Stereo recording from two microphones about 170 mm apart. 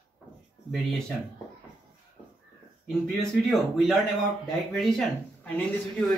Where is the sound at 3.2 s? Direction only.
Centre (ahead or behind).